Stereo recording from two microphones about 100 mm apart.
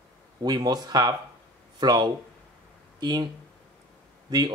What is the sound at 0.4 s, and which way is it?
Speech, 40° right (ahead or behind).